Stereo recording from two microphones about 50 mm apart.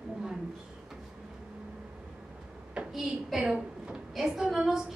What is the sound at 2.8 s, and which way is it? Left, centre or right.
Hands, right.